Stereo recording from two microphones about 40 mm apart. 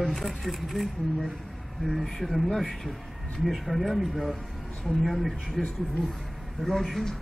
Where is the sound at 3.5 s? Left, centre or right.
Centre.